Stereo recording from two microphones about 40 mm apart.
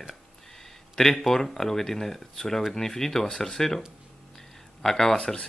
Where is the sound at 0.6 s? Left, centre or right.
Centre.